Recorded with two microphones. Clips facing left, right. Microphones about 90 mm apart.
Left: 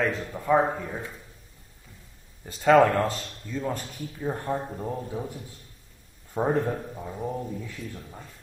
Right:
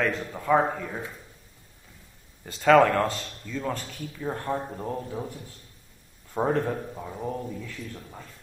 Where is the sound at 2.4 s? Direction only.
5° left (ahead or behind).